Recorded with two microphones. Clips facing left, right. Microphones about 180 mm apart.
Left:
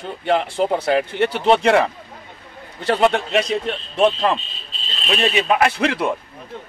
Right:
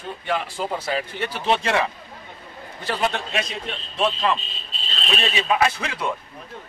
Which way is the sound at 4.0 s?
45° left (ahead or behind).